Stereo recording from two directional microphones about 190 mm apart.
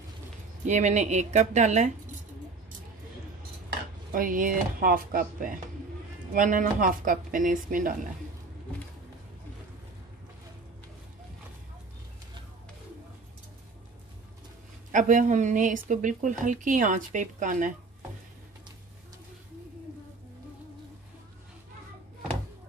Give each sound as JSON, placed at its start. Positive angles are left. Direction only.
{"t": 0.7, "sound": "speech", "side_deg": -40}
{"t": 4.1, "sound": "speech", "side_deg": -45}
{"t": 14.9, "sound": "speech", "side_deg": -40}